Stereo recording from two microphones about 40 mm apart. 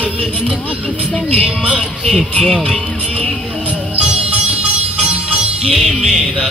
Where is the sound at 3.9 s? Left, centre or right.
Right.